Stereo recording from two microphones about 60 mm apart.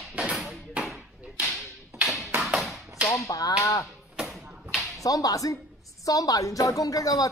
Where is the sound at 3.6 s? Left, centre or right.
Left.